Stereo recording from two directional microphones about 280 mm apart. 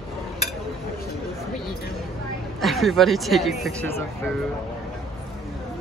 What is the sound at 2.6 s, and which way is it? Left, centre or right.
Speech, centre.